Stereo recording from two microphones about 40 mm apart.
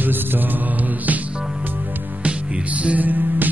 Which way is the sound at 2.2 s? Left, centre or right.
Right.